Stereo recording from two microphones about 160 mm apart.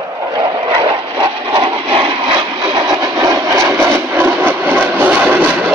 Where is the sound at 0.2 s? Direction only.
25° right (ahead or behind).